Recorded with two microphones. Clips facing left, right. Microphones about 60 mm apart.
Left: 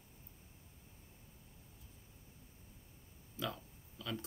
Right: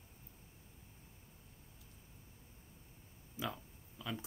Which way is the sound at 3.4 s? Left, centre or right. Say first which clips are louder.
Even; centre.